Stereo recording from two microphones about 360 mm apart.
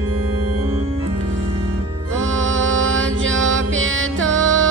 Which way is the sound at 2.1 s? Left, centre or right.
Right.